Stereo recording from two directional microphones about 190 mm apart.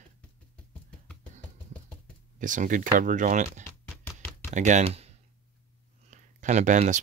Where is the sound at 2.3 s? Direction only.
40° right (ahead or behind).